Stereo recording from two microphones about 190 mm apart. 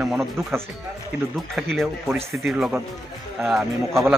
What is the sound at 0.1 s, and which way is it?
Speech, centre (ahead or behind).